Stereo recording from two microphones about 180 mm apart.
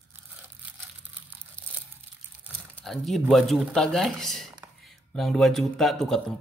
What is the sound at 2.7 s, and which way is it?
Speech, centre (ahead or behind).